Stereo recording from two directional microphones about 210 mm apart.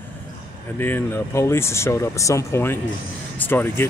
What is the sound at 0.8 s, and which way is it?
Speech, 10° left (ahead or behind).